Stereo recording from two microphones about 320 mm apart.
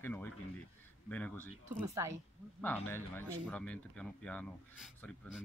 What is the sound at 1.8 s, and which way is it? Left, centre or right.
Speech, centre.